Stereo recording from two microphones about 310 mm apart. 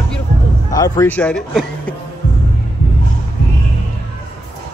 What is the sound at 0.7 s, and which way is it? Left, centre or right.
A man's voice, centre.